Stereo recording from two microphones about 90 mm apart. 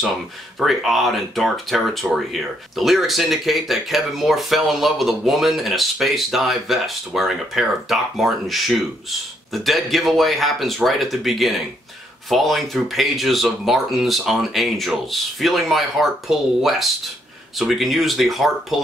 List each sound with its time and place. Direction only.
0.6 s speech: centre (ahead or behind)